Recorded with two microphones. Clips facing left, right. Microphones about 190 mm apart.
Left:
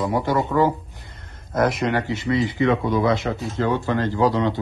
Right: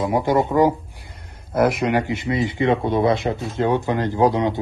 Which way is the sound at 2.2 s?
25° right (ahead or behind).